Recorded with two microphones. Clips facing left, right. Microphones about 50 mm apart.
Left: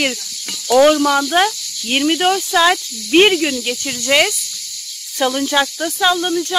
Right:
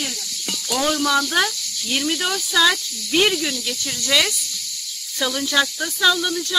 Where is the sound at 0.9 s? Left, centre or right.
Left.